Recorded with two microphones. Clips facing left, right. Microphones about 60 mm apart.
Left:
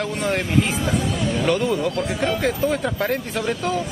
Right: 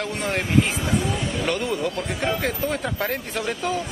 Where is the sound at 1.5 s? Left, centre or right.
Centre.